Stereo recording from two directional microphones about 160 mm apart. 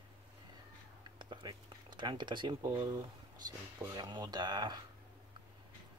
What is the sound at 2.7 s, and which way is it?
Speech, 30° right (ahead or behind).